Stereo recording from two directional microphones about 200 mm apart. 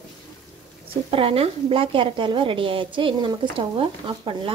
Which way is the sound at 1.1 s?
25° right (ahead or behind).